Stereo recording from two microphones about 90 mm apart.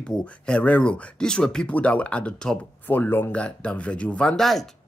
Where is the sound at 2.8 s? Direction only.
20° left (ahead or behind); by 4.7 s centre (ahead or behind).